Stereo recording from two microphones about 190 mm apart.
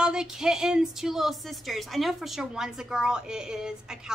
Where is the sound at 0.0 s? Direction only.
5° right (ahead or behind).